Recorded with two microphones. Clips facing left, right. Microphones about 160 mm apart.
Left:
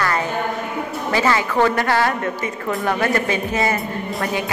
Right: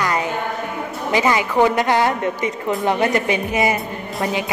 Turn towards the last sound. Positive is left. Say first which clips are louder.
# right 2 dB
turn(degrees=-15)  # may be behind; listen again after turning